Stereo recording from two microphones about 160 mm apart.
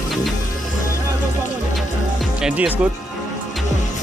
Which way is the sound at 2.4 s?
5° right (ahead or behind).